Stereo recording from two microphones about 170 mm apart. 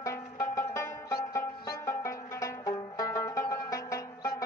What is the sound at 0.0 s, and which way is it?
Music, 15° left (ahead or behind).